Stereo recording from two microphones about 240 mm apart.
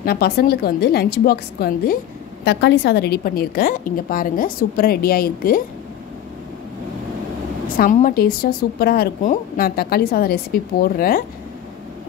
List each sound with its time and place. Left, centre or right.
0.0 s a woman's voice: left
7.6 s a woman's voice: left